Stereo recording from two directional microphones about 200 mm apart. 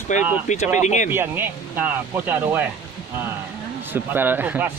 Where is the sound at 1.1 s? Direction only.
10° right (ahead or behind).